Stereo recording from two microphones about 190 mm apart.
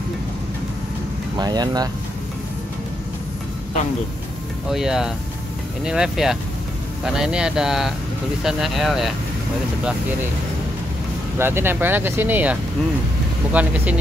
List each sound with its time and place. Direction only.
1.4 s speech: 20° right (ahead or behind)
4.6 s speech: centre (ahead or behind)
11.3 s speech: 10° right (ahead or behind)